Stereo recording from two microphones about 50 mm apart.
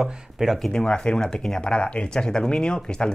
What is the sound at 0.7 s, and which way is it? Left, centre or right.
Speech, centre.